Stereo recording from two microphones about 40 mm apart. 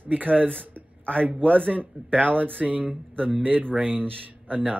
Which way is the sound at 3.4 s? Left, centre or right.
Right.